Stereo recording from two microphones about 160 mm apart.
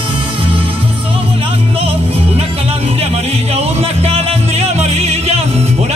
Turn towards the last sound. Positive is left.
turn(degrees=-40)  # may be behind; listen again after turning